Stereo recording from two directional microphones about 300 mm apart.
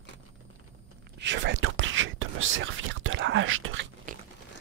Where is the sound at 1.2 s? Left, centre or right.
Right.